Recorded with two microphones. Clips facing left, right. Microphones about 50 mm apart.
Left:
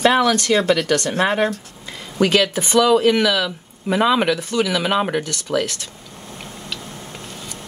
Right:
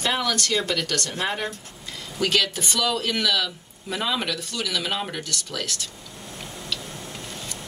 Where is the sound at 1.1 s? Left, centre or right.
Left.